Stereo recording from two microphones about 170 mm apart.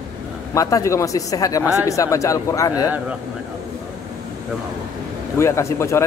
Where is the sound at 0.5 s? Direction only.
20° left (ahead or behind).